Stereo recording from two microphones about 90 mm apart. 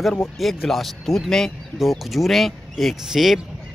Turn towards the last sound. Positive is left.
turn(degrees=-5)  # may be behind; listen again after turning